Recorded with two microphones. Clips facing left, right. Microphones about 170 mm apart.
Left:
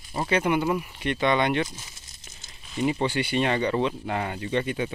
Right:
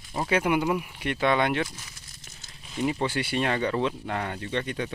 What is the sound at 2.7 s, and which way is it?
Speech, centre (ahead or behind).